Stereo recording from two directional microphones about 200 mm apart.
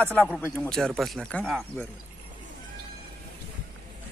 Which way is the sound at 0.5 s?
5° left (ahead or behind).